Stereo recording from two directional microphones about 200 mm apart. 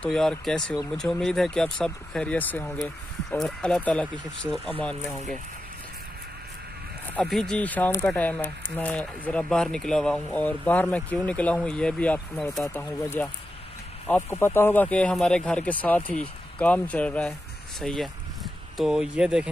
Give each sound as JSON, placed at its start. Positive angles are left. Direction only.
{"t": 0.0, "sound": "speech", "side_deg": 5}
{"t": 7.2, "sound": "speech", "side_deg": 0}